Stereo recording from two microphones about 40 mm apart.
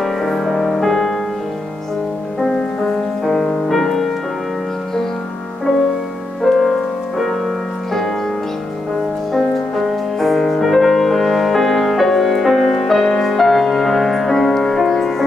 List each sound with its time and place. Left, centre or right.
0.0 s music: centre
2.4 s music: centre
3.6 s music: centre
6.4 s music: centre
9.3 s music: centre